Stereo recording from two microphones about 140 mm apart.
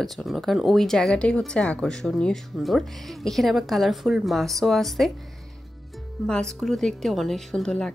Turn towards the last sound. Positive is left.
turn(degrees=5)  # may be behind; listen again after turning